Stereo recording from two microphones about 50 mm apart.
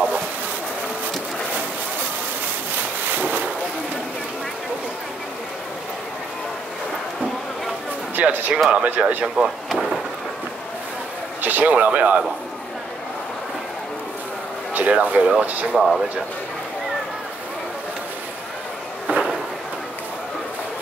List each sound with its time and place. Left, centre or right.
3.1 s boat: right
8.2 s speech: right
8.9 s speech: right
9.7 s thunder: centre
11.4 s speech: right
14.7 s speech: right
15.7 s speech: centre
19.0 s a sound: centre